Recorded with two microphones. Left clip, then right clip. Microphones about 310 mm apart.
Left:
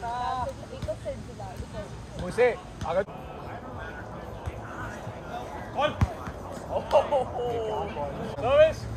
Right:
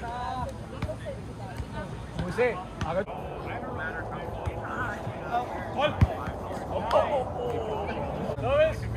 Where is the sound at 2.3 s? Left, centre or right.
Left.